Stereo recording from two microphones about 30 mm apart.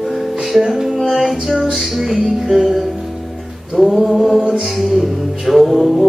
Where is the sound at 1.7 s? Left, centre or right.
Centre.